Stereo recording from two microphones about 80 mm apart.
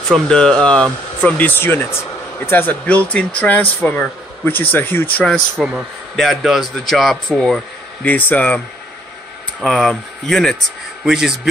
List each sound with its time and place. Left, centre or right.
0.1 s speech: centre
1.2 s speech: left
5.2 s a man's voice: centre
8.0 s speech: left
9.6 s speech: centre
11.1 s speech: centre